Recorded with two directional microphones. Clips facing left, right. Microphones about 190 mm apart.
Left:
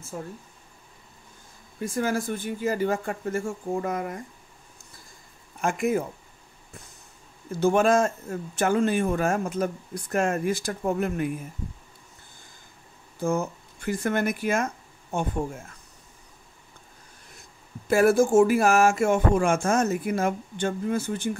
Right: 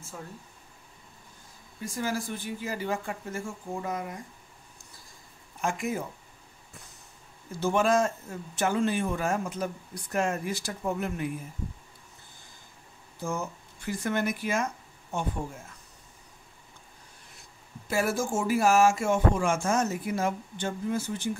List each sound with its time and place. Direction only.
1.8 s speech: 55° left (ahead or behind)
5.6 s speech: 55° left (ahead or behind)
7.6 s speech: 50° left (ahead or behind)
13.2 s speech: 50° left (ahead or behind)
17.8 s speech: 55° left (ahead or behind)